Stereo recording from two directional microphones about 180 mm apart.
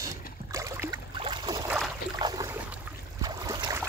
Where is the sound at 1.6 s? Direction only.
5° right (ahead or behind).